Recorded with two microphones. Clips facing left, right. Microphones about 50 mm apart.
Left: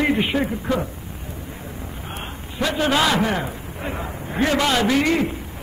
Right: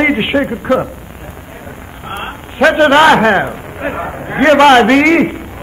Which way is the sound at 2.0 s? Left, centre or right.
Right.